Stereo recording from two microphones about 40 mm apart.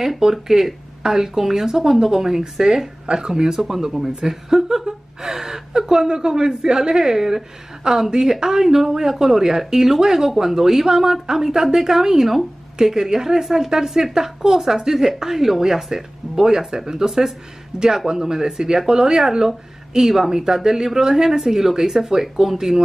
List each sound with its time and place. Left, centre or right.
0.2 s a woman's voice: centre